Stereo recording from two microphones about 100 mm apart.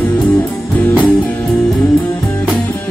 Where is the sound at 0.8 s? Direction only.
15° left (ahead or behind).